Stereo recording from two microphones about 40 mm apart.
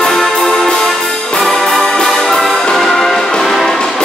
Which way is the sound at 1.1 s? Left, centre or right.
Left.